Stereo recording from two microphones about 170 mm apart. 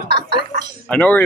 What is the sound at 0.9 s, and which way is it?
Speech, 10° left (ahead or behind).